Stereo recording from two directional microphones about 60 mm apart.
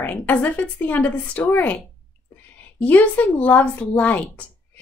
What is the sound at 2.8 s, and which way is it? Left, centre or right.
Speech, left.